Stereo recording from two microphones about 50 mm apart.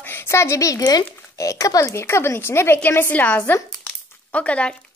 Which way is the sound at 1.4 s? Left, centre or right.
Left.